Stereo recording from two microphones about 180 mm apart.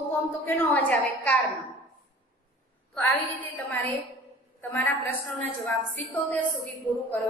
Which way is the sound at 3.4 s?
10° left (ahead or behind).